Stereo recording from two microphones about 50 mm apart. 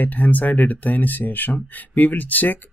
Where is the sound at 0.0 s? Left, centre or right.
Left.